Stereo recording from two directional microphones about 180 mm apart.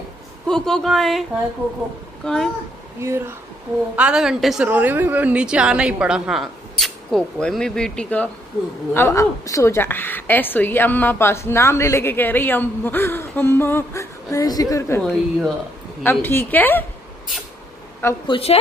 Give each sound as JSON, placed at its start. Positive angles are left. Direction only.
{"t": 0.5, "sound": "a woman's voice", "side_deg": 5}
{"t": 2.2, "sound": "a woman's voice", "side_deg": 5}
{"t": 3.0, "sound": "a woman's voice", "side_deg": -15}
{"t": 15.0, "sound": "a woman's voice", "side_deg": 0}
{"t": 16.0, "sound": "a woman's voice", "side_deg": 10}
{"t": 18.2, "sound": "a woman's voice", "side_deg": 30}